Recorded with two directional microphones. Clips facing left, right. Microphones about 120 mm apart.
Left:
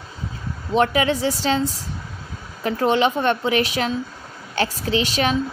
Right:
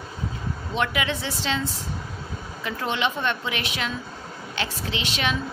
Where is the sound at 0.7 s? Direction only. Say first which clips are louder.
Left 8 dB; 40° left (ahead or behind).